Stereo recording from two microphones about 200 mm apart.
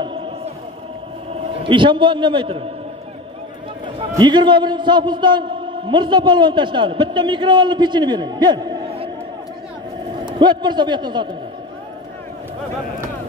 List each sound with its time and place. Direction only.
1.3 s a man's voice: 25° right (ahead or behind)
3.8 s a man's voice: 20° right (ahead or behind)
10.2 s a man's voice: 20° right (ahead or behind)